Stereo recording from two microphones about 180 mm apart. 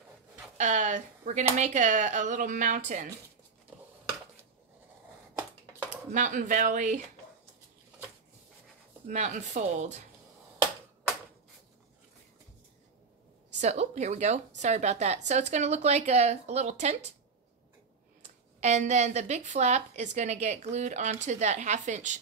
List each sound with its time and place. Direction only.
0.6 s speech: 40° right (ahead or behind)
6.1 s speech: 45° right (ahead or behind)
9.0 s a woman's voice: 40° right (ahead or behind)
13.6 s a woman's voice: 40° right (ahead or behind)
18.2 s a woman's voice: 40° right (ahead or behind)